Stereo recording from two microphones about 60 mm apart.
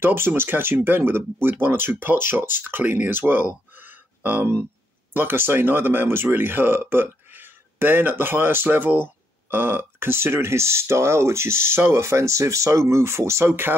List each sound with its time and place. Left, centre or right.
0.0 s speech: right